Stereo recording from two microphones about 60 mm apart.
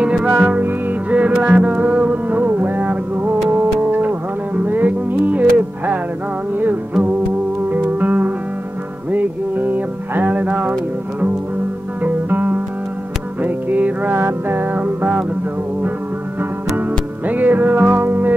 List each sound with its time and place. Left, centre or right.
0.0 s music: centre
7.7 s music: right
17.3 s music: right